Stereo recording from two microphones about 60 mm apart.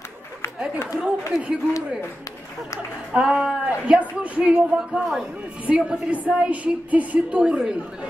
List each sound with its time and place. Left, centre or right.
0.9 s a man's voice: centre
3.1 s a man's voice: centre